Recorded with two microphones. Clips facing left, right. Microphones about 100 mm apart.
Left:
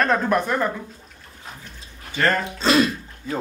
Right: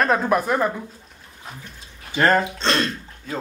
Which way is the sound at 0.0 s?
5° right (ahead or behind).